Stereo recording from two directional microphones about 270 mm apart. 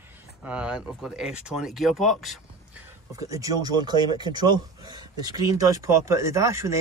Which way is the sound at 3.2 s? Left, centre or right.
Centre.